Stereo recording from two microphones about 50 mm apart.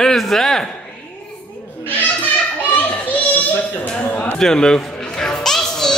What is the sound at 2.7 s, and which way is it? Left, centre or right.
Children playing, left.